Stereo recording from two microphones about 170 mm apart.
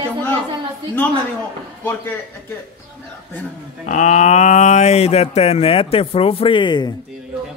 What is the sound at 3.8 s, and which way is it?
Speech, 45° left (ahead or behind).